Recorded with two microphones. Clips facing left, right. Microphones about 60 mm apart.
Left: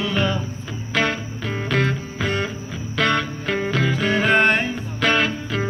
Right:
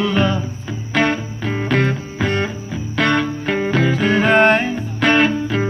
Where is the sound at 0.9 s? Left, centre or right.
Centre.